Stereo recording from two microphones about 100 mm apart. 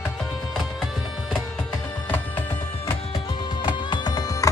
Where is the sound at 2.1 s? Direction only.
20° left (ahead or behind).